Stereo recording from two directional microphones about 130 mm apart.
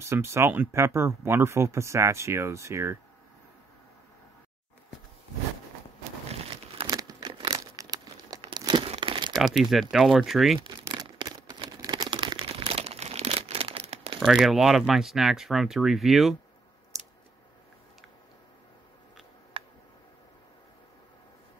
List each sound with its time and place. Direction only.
0.0 s speech: 20° right (ahead or behind)
6.9 s tearing: 25° right (ahead or behind)
7.7 s crumpling: 30° right (ahead or behind)
9.3 s speech: centre (ahead or behind)
10.8 s crumpling: 25° right (ahead or behind)
11.1 s a sound: 30° right (ahead or behind); by 14.2 s 50° right (ahead or behind)
14.2 s speech: 5° right (ahead or behind)
19.6 s tick: 50° right (ahead or behind)